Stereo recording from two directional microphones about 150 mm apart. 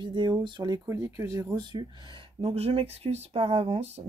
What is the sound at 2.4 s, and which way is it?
Speech, 40° right (ahead or behind).